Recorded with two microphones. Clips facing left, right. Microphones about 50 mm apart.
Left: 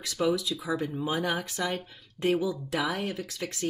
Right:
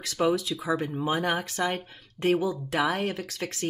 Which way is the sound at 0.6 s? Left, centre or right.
Right.